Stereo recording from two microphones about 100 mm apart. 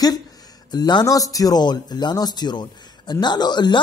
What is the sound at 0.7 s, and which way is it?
Speech, 45° left (ahead or behind).